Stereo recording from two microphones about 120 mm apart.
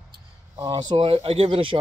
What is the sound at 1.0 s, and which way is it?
Speech, 55° right (ahead or behind).